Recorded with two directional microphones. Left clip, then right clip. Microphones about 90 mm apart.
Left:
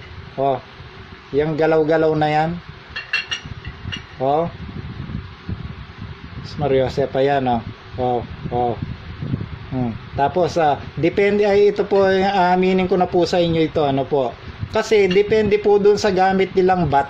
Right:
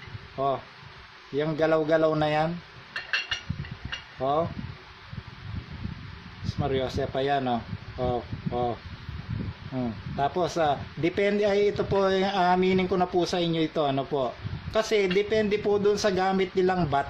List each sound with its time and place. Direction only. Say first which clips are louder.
1.4 s speech: left 8 dB; 15° left (ahead or behind)
2.9 s a sound: left 6 dB; 5° left (ahead or behind)
4.2 s speech: left 8 dB; 20° left (ahead or behind)
6.4 s speech: left 10 dB; 20° left (ahead or behind)
10.1 s speech: left 9 dB; 15° left (ahead or behind)